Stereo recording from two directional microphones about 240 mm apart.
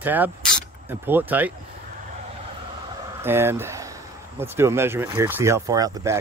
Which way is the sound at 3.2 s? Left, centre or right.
Centre.